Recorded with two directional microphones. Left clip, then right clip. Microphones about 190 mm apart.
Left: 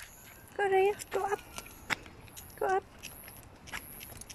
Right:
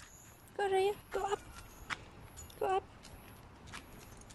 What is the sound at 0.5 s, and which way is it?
Speech, centre (ahead or behind).